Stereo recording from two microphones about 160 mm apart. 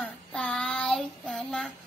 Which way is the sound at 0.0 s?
5° left (ahead or behind).